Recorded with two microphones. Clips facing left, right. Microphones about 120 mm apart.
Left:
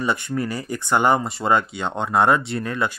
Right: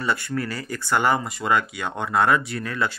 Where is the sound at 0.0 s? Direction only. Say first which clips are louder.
Left 2 dB; 20° left (ahead or behind).